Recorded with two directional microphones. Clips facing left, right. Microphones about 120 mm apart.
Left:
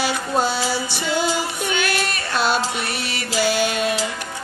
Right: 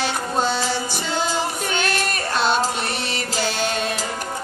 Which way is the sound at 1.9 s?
45° right (ahead or behind).